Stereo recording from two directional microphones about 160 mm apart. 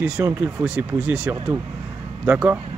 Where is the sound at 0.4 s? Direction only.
10° right (ahead or behind).